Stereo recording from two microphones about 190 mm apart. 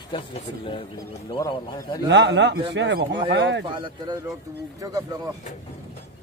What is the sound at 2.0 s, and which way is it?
A man's voice, 65° right (ahead or behind).